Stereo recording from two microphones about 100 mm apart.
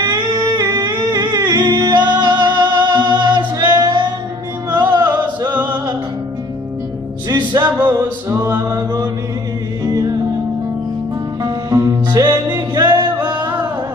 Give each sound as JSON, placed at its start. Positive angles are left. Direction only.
{"t": 0.5, "sound": "music", "side_deg": -40}
{"t": 7.2, "sound": "music", "side_deg": -45}
{"t": 8.3, "sound": "music", "side_deg": -25}
{"t": 8.6, "sound": "mantra", "side_deg": -40}
{"t": 9.8, "sound": "music", "side_deg": -35}
{"t": 11.4, "sound": "music", "side_deg": -40}
{"t": 13.4, "sound": "music", "side_deg": -20}